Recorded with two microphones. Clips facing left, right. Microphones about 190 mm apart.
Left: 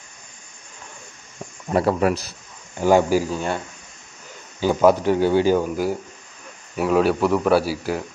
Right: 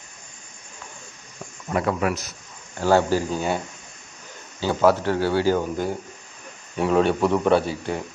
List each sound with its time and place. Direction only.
1.7 s speech: 35° left (ahead or behind)
2.8 s speech: 15° left (ahead or behind)
3.3 s a man's voice: 5° right (ahead or behind)
4.6 s a man's voice: 15° left (ahead or behind)